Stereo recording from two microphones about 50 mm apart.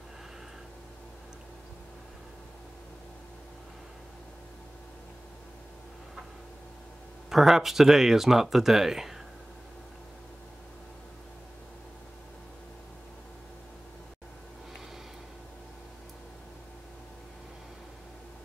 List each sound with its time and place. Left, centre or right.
7.2 s speech: centre